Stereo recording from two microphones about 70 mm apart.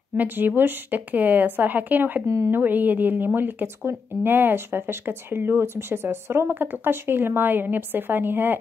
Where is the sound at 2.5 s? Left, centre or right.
Right.